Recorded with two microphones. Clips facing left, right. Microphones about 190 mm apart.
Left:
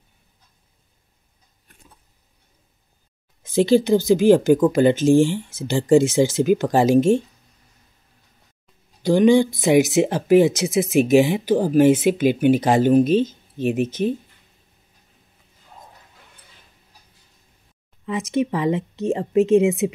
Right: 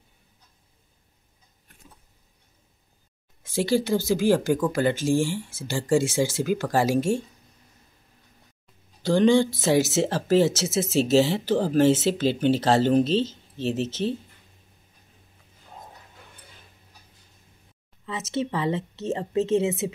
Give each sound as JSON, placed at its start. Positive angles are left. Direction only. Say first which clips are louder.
{"t": 3.4, "sound": "speech", "louder": "left 7 dB", "side_deg": 20}
{"t": 9.0, "sound": "speech", "louder": "left 4 dB", "side_deg": 15}
{"t": 18.0, "sound": "speech", "louder": "left 6 dB", "side_deg": 15}